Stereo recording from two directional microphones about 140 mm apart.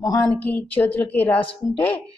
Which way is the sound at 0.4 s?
10° left (ahead or behind).